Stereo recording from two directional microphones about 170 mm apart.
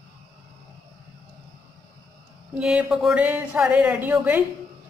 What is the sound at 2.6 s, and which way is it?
A woman's voice, 5° right (ahead or behind).